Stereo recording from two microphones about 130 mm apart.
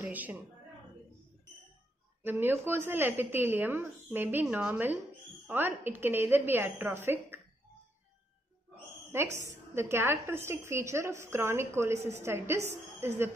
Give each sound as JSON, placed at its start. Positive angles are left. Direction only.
{"t": 0.0, "sound": "a woman's voice", "side_deg": -15}
{"t": 2.2, "sound": "a woman's voice", "side_deg": -15}
{"t": 9.1, "sound": "a woman's voice", "side_deg": -20}